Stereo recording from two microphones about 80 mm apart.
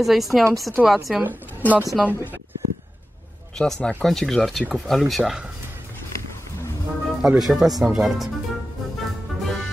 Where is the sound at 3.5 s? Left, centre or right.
Centre.